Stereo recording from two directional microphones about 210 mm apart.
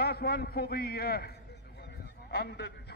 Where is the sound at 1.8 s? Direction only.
50° left (ahead or behind).